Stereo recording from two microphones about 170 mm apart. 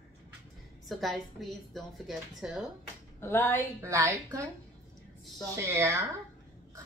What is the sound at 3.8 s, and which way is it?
Speech, 20° right (ahead or behind).